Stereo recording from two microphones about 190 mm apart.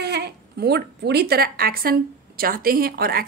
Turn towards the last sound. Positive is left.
turn(degrees=-50)  # may be behind; listen again after turning